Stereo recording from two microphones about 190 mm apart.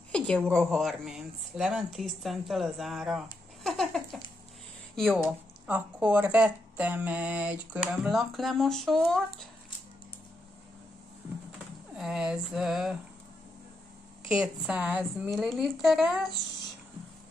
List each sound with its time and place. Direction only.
0.1 s a woman's voice: 5° left (ahead or behind)
12.0 s speech: 5° right (ahead or behind)
14.3 s speech: 5° right (ahead or behind)